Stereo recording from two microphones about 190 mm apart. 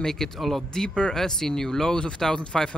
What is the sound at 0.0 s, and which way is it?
Speech, centre (ahead or behind).